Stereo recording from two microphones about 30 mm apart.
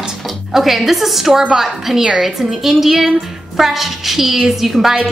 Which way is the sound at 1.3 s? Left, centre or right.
Centre.